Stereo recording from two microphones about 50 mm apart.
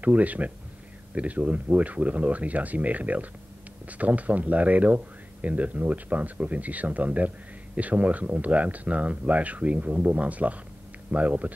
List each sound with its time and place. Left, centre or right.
0.0 s speech: right